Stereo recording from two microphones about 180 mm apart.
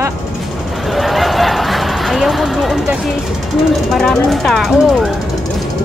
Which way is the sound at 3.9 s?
Centre (ahead or behind).